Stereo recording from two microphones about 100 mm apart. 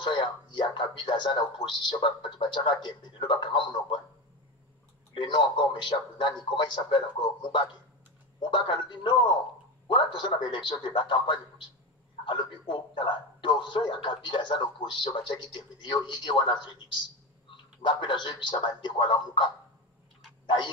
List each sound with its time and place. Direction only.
0.0 s a man's voice: 50° left (ahead or behind)
5.1 s a man's voice: 50° left (ahead or behind)
8.4 s a man's voice: 50° left (ahead or behind)
20.4 s a sound: 50° left (ahead or behind)